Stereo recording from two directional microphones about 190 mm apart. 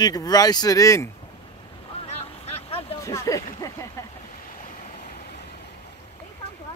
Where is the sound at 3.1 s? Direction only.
15° left (ahead or behind).